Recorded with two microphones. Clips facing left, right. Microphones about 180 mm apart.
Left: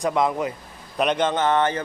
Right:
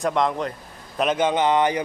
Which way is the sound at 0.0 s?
5° left (ahead or behind).